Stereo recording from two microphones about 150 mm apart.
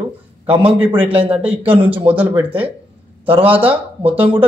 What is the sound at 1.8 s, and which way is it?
Speech, 10° right (ahead or behind).